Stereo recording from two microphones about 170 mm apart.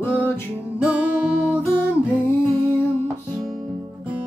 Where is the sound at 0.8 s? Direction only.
10° right (ahead or behind).